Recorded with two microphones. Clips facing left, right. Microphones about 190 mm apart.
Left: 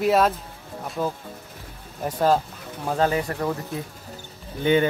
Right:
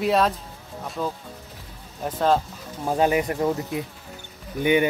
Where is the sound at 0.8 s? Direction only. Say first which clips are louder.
Left 2 dB; 5° left (ahead or behind).